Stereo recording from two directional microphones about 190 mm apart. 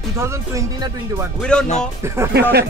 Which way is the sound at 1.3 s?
5° left (ahead or behind).